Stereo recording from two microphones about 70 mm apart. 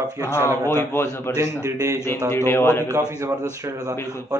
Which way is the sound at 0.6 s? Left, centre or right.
Left.